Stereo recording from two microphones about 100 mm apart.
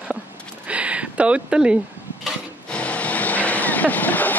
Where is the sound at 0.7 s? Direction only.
10° right (ahead or behind).